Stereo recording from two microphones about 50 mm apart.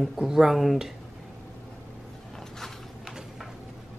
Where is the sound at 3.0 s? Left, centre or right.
Centre.